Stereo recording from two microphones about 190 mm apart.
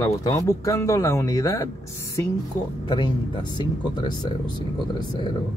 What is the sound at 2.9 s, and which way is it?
Speech, 25° left (ahead or behind).